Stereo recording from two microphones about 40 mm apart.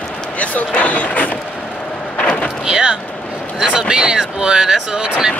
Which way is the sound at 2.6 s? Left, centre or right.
Centre.